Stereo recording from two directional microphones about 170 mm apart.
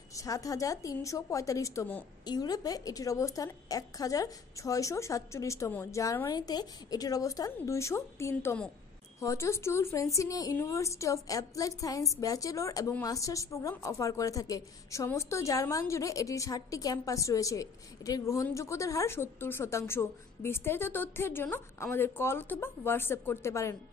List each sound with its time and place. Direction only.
0.1 s a woman's voice: 20° left (ahead or behind)
2.2 s a woman's voice: 25° left (ahead or behind)